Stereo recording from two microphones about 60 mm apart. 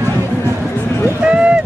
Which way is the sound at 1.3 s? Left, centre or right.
Centre.